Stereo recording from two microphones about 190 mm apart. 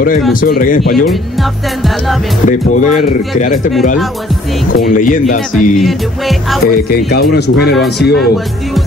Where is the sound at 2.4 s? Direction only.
40° left (ahead or behind).